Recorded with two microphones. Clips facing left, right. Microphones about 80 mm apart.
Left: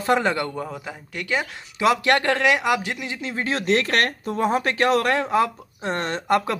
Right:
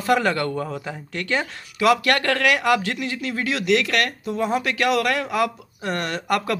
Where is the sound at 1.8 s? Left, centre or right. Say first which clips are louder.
Right 1 dB; left.